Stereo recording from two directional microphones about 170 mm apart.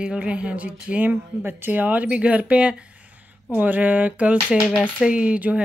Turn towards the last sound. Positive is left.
turn(degrees=-10)  # may be behind; listen again after turning